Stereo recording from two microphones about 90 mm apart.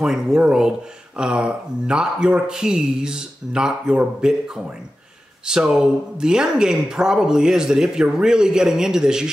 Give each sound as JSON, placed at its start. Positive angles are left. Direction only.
{"t": 0.0, "sound": "speech", "side_deg": -5}